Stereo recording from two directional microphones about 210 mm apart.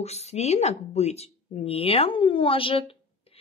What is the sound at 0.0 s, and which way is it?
Speech, 30° left (ahead or behind).